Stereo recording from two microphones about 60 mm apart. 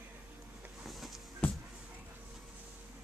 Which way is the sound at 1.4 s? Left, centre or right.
Left.